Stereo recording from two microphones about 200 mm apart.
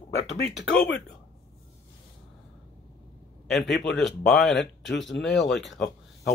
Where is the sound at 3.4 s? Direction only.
Centre (ahead or behind).